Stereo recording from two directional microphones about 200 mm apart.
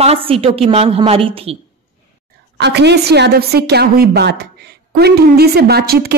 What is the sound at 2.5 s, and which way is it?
A woman's voice, 60° right (ahead or behind).